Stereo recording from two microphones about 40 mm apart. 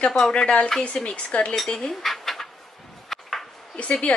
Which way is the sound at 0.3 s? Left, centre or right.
Left.